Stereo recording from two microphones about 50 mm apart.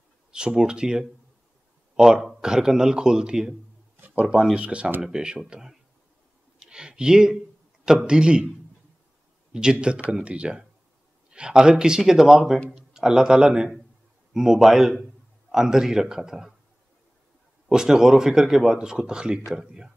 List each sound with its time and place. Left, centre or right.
0.3 s speech: centre
4.6 s a man's voice: right
9.5 s a man's voice: centre
17.6 s speech: centre